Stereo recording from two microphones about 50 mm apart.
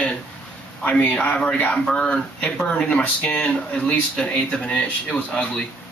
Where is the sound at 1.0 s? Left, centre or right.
Left.